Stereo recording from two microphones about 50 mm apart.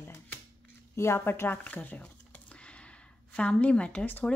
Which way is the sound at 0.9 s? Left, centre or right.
Left.